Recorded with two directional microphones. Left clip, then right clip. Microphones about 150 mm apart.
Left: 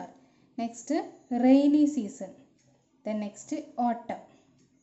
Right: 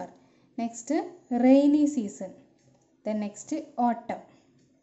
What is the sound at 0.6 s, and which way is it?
A woman's voice, 15° right (ahead or behind).